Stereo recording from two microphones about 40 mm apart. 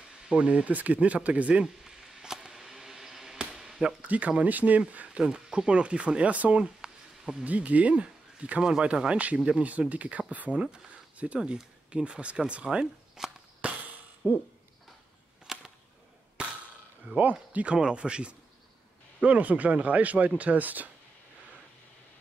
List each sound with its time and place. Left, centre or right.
0.3 s speech: right
1.9 s a sound: centre
4.0 s speech: right
6.3 s speech: right
6.6 s a sound: centre
7.4 s speech: right
10.5 s speech: right
13.6 s a sound: right
14.2 s speech: right
15.4 s a sound: centre
16.4 s cap gun: right
17.2 s speech: right
17.7 s speech: right
19.2 s speech: right